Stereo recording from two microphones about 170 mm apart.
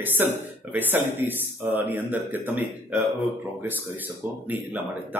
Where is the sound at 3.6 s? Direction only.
10° right (ahead or behind).